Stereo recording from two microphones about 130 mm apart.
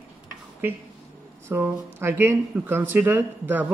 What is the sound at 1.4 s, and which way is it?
Speech, 20° right (ahead or behind).